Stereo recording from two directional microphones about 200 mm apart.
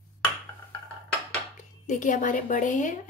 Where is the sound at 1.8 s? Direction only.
40° left (ahead or behind).